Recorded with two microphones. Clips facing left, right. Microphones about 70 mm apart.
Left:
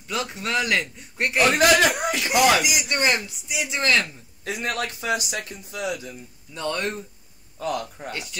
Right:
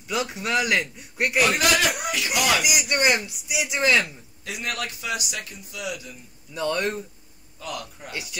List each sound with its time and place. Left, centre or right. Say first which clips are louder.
0.1 s speech: right 1 dB; centre
1.5 s speech: left 4 dB; left
2.9 s speech: right 3 dB; centre
4.5 s speech: left 3 dB; left
6.5 s speech: right 2 dB; centre
7.5 s speech: left 7 dB; left
8.1 s speech: right 2 dB; centre